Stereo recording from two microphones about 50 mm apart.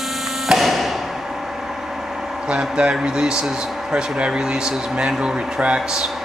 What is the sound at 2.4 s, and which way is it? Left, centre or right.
Speech, centre.